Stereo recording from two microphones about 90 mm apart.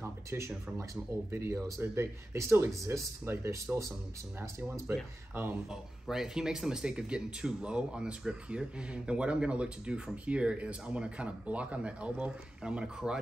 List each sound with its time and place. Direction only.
0.0 s speech: 25° right (ahead or behind)
5.7 s speech: 5° right (ahead or behind)